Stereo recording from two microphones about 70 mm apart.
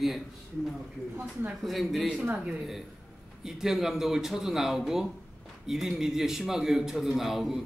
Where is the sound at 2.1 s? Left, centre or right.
Centre.